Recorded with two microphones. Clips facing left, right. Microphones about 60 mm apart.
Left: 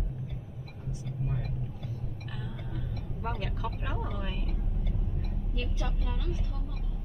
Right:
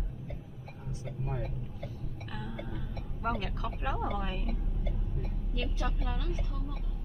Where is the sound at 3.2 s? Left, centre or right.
Centre.